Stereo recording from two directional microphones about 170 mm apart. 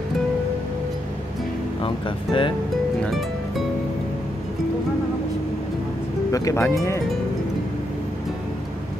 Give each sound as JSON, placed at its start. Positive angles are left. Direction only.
{"t": 1.8, "sound": "speech", "side_deg": 30}
{"t": 3.0, "sound": "music", "side_deg": 0}
{"t": 6.3, "sound": "speech", "side_deg": 15}